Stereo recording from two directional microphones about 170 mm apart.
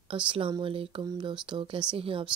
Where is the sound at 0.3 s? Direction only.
30° right (ahead or behind).